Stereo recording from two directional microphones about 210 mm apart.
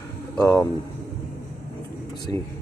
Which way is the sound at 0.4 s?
5° left (ahead or behind).